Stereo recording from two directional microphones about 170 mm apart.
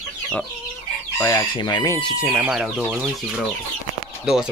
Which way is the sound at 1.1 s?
20° left (ahead or behind).